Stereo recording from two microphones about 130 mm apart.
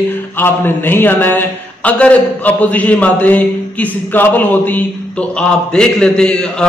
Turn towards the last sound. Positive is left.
turn(degrees=5)  # may be behind; listen again after turning